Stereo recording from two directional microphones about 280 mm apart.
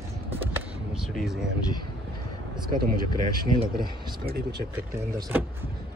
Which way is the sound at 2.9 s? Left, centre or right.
Centre.